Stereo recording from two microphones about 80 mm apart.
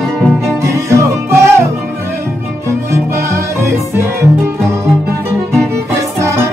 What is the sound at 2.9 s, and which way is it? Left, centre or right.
Music, right.